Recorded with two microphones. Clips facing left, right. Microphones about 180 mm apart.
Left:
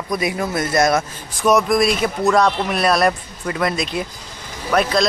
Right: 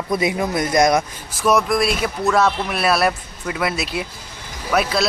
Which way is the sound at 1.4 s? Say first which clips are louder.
Left 2 dB; centre (ahead or behind).